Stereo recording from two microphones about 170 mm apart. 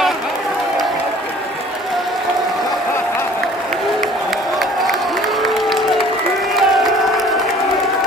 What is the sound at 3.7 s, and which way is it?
Crowd, centre (ahead or behind).